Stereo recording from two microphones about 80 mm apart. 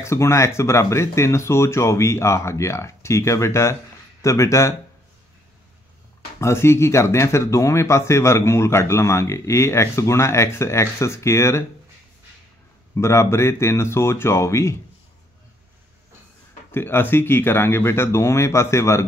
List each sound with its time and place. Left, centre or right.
0.0 s speech: left
6.4 s speech: left
12.9 s speech: left
16.7 s speech: left